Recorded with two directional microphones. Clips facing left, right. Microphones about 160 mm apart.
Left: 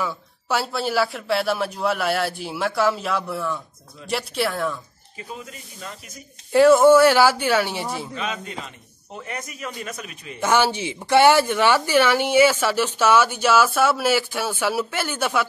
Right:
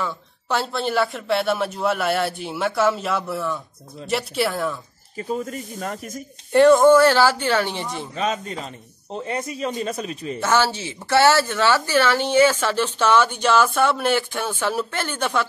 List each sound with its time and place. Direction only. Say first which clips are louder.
0.0 s speech: even; 5° left (ahead or behind)
5.1 s speech: right 10 dB; 45° right (ahead or behind)
6.5 s speech: even; 5° left (ahead or behind)
8.1 s a man's voice: right 5 dB; 40° right (ahead or behind)
10.4 s speech: left 1 dB; 15° left (ahead or behind)